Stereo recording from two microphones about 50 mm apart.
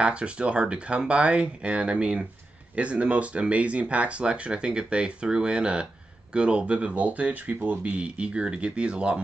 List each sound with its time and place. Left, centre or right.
0.0 s speech: right